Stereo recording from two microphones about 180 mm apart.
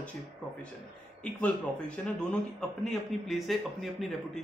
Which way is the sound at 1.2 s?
5° left (ahead or behind).